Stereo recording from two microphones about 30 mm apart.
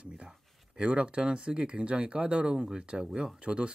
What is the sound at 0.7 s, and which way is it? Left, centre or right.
Speech, right.